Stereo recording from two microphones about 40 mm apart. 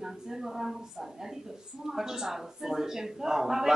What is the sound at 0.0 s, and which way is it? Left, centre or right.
A woman's voice, centre.